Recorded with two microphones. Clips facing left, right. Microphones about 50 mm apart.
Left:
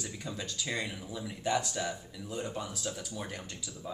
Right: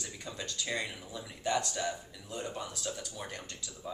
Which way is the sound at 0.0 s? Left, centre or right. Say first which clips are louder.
Left 2 dB; centre.